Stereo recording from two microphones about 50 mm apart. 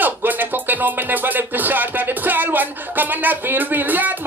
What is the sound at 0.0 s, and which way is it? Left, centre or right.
Music, right.